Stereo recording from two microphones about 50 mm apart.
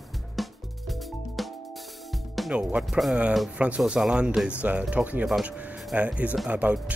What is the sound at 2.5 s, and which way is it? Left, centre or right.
Speech, right.